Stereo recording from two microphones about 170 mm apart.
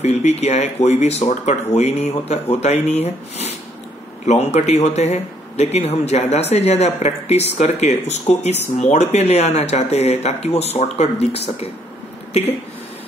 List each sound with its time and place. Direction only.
0.0 s speech: 40° left (ahead or behind)